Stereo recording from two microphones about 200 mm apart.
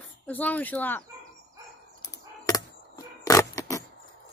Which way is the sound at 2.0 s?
15° left (ahead or behind).